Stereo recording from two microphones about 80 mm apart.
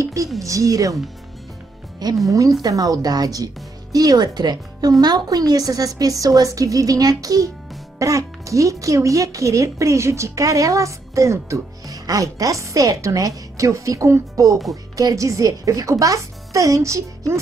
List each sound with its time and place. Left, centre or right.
0.0 s a sound: right
0.4 s speech: right
2.2 s speech: right